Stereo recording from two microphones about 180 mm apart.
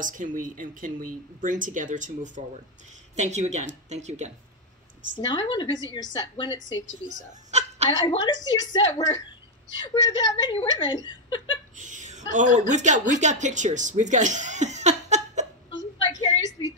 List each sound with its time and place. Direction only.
0.0 s speech: 45° right (ahead or behind)
5.1 s a woman's voice: 25° left (ahead or behind)
7.9 s a woman's voice: 25° left (ahead or behind)
11.7 s a woman's voice: 45° right (ahead or behind)
16.0 s a sound: 25° left (ahead or behind)